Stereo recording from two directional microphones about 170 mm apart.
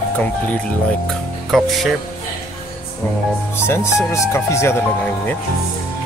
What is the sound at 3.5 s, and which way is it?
Speech, 15° left (ahead or behind).